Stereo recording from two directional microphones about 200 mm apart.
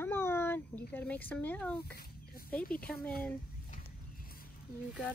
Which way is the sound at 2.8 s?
5° left (ahead or behind).